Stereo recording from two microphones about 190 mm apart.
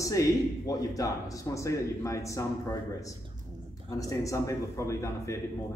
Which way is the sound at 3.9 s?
15° left (ahead or behind).